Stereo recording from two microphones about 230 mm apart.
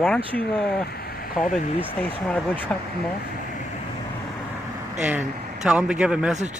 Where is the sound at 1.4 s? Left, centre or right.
Left.